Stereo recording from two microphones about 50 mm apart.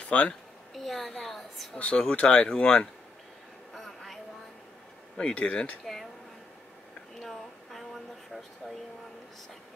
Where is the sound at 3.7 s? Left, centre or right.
Centre.